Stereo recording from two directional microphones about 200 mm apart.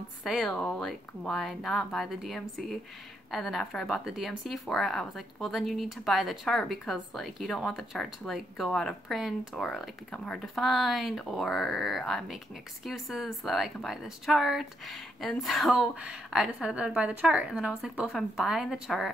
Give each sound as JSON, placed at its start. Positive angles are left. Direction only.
{"t": 0.2, "sound": "a woman's voice", "side_deg": 0}